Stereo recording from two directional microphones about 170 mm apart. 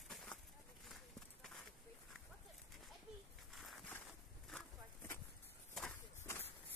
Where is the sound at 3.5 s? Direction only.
Centre (ahead or behind).